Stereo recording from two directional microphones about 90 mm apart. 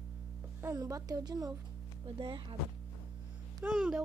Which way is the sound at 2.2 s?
70° right (ahead or behind).